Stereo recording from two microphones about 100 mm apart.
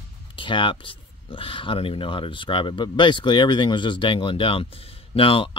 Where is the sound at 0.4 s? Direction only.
55° left (ahead or behind).